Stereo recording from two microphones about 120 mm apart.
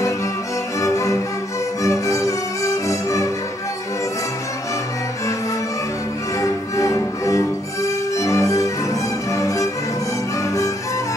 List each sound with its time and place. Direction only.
0.7 s music: 25° left (ahead or behind)
6.4 s music: 25° left (ahead or behind)